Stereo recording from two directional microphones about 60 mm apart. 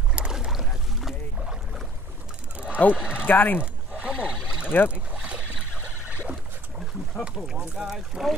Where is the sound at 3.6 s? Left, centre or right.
Centre.